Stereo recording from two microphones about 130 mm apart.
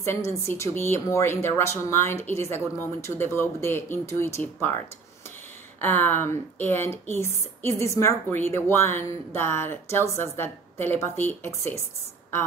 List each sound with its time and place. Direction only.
0.0 s speech: 20° left (ahead or behind)
5.8 s a woman's voice: 15° left (ahead or behind)